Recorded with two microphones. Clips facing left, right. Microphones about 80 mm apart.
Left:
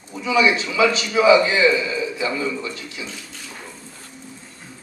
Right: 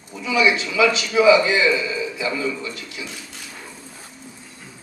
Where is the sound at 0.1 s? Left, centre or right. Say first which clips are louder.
Left 1 dB; left.